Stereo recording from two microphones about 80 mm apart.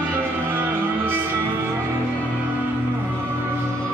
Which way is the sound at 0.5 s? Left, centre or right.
Right.